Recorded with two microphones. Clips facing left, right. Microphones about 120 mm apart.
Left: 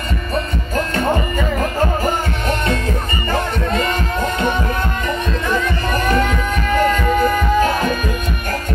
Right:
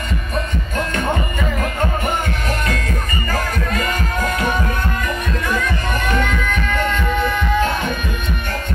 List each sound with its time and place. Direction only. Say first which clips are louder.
2.0 s music: left 2 dB; 30° left (ahead or behind)
5.5 s music: left 2 dB; 35° left (ahead or behind)